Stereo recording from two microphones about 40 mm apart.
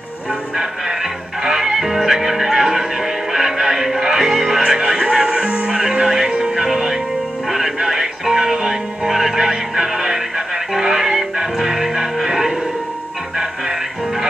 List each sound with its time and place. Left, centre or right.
0.6 s music: centre